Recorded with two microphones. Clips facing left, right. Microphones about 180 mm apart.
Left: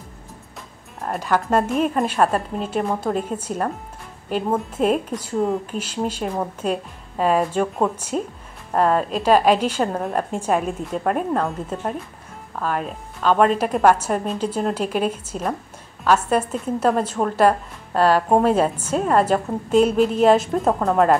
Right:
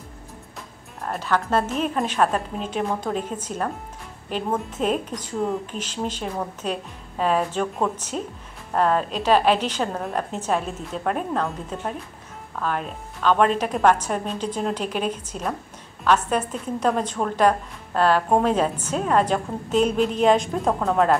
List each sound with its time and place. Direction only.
1.2 s a woman's voice: 10° left (ahead or behind)